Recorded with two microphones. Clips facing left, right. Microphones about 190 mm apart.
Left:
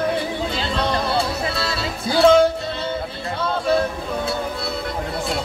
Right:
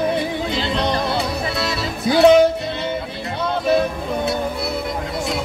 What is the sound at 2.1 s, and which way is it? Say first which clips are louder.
Music: right 2 dB; 20° right (ahead or behind).